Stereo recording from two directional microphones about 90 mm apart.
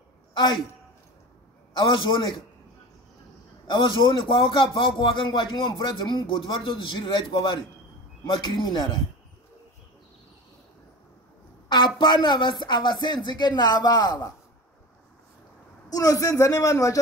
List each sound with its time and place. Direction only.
0.3 s a sound: 55° left (ahead or behind)
1.7 s a man's voice: 55° left (ahead or behind)
3.6 s a man's voice: 60° left (ahead or behind)
11.7 s a man's voice: 60° left (ahead or behind); by 14.3 s 45° left (ahead or behind)
15.9 s a man's voice: 40° left (ahead or behind)